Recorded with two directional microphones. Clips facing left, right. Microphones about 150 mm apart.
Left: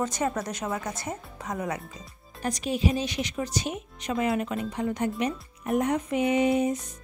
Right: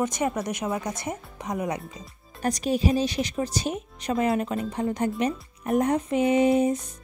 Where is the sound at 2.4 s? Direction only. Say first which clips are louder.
Right 3 dB; 40° right (ahead or behind).